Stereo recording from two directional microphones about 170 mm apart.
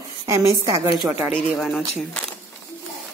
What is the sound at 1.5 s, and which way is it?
Speech, centre (ahead or behind).